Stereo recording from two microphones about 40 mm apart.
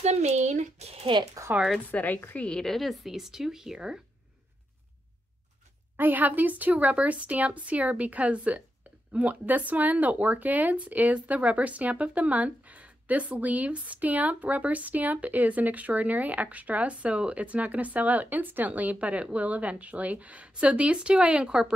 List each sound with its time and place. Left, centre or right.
1.5 s a woman's voice: right
1.9 s a woman's voice: left
2.5 s speech: centre
5.9 s speech: right; by 21.7 s centre